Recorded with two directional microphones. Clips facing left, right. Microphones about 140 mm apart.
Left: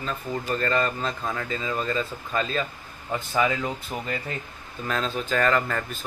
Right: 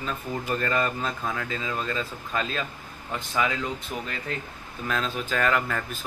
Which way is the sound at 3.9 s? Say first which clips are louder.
Left 1 dB; 50° left (ahead or behind).